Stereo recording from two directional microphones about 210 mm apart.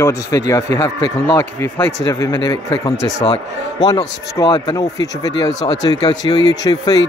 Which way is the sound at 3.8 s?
20° left (ahead or behind).